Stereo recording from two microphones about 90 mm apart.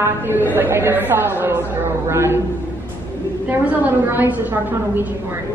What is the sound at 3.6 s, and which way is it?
A woman's voice, 20° right (ahead or behind).